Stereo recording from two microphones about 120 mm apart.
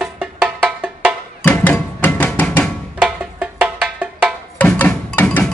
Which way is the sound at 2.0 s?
15° left (ahead or behind).